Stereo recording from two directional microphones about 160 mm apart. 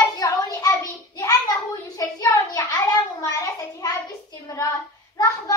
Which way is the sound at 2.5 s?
20° left (ahead or behind).